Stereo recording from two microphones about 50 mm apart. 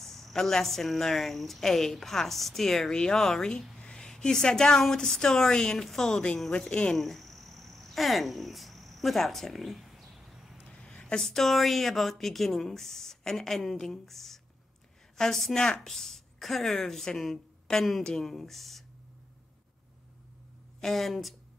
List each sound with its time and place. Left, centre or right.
0.0 s speech: centre
6.7 s speech: left
7.0 s cricket: centre
10.7 s a sound: left
11.1 s a woman's voice: centre
20.8 s speech: centre